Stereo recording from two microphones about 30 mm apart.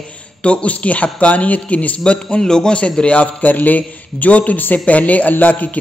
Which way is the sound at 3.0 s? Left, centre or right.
Left.